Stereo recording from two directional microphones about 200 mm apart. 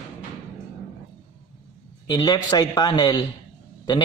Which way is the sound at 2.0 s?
20° left (ahead or behind).